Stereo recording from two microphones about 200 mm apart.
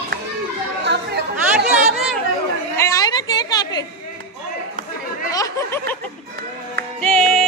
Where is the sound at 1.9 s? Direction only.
Centre (ahead or behind).